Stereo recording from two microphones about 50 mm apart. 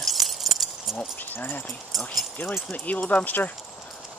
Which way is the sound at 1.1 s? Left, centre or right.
Left.